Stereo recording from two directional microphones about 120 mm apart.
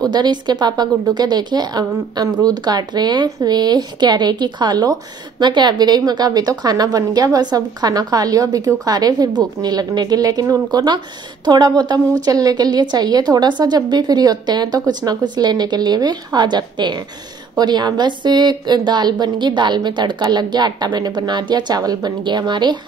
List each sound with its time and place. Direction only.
0.0 s a woman's voice: 35° right (ahead or behind)